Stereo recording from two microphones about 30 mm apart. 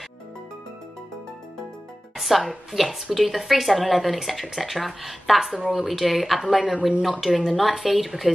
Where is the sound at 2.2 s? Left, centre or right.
Centre.